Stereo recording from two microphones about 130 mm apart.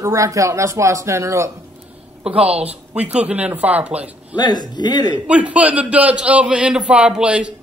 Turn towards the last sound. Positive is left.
turn(degrees=-10)  # may be behind; listen again after turning